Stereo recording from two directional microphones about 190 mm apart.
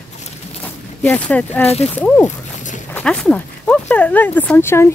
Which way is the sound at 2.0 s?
10° left (ahead or behind).